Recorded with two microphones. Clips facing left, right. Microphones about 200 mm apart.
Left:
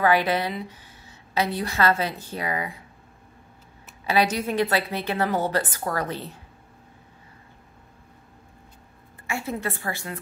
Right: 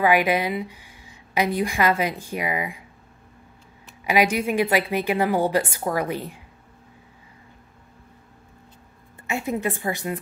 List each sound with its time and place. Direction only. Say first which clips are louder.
0.0 s a woman's voice: right 2 dB; 10° right (ahead or behind)
4.0 s a woman's voice: right 2 dB; 10° right (ahead or behind)
9.3 s a woman's voice: right 4 dB; 15° right (ahead or behind)